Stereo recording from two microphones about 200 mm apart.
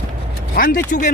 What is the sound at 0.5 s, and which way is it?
Speech, 45° left (ahead or behind).